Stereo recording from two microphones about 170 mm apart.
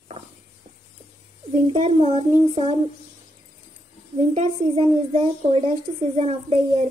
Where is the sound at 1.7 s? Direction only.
35° right (ahead or behind).